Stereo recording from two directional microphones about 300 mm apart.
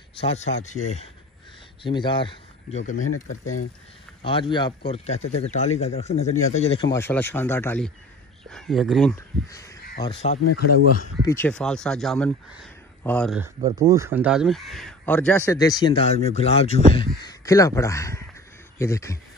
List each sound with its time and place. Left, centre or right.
0.2 s speech: left
4.2 s speech: centre
9.1 s speech: centre
10.0 s speech: left
11.2 s speech: centre
13.4 s speech: centre